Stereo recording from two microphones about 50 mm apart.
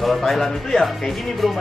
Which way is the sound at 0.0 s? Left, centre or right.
Centre.